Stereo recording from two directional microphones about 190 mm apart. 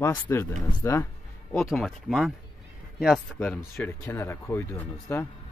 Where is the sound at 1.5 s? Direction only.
Centre (ahead or behind).